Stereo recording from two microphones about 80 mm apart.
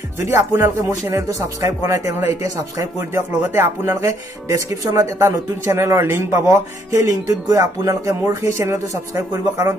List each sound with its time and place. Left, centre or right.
0.2 s speech: right